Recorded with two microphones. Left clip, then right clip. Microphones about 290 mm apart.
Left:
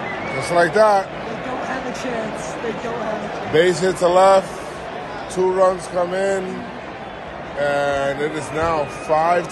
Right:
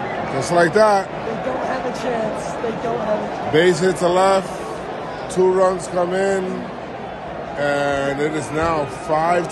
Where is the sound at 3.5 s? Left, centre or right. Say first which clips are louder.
Even; centre.